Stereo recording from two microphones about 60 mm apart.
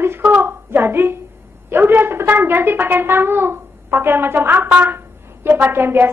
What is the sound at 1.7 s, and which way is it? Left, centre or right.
Hands, right.